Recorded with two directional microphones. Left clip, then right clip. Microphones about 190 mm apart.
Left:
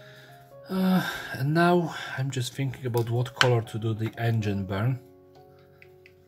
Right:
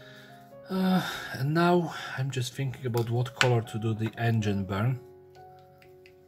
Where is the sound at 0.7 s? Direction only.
5° left (ahead or behind).